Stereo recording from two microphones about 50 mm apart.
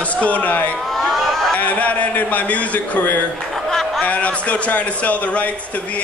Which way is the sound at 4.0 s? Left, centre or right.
Left.